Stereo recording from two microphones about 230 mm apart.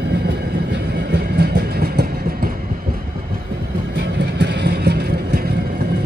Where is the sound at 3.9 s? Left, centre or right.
Right.